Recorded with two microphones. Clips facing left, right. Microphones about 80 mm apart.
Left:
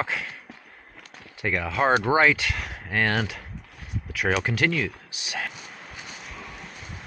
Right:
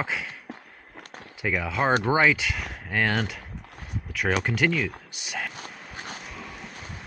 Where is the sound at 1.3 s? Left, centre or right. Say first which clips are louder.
Left 1 dB; centre.